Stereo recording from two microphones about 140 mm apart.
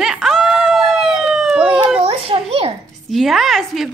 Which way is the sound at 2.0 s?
45° right (ahead or behind).